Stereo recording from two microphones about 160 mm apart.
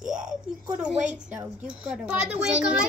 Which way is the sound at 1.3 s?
10° right (ahead or behind).